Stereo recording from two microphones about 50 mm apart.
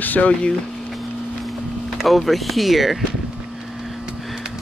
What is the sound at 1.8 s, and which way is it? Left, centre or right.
Speech, centre.